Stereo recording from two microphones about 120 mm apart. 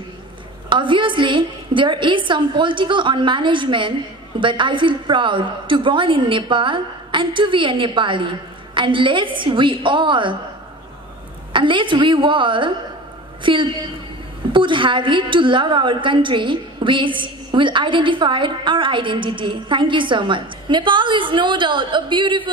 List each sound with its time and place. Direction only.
0.7 s a woman's voice: 45° right (ahead or behind)
11.5 s a woman's voice: 45° right (ahead or behind)